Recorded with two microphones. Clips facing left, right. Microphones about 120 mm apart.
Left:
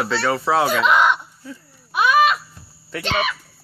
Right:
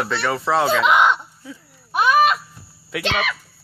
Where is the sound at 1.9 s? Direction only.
40° right (ahead or behind).